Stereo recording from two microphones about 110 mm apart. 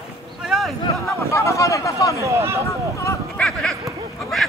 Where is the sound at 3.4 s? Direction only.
5° left (ahead or behind).